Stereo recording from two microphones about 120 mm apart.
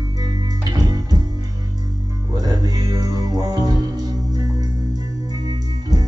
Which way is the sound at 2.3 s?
35° right (ahead or behind).